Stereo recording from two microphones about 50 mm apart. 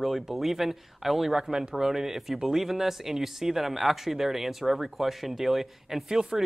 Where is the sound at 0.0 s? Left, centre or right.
Centre.